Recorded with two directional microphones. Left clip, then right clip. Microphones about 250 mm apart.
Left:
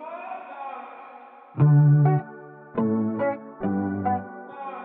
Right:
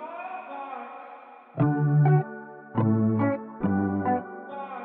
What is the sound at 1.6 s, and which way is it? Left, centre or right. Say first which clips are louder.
Music: even; centre.